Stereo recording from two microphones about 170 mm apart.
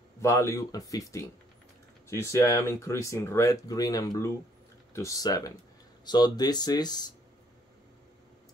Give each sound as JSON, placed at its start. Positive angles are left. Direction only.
{"t": 0.2, "sound": "speech", "side_deg": 15}